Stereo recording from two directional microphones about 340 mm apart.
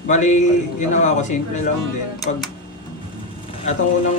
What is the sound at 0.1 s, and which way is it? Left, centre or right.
A man's voice, left.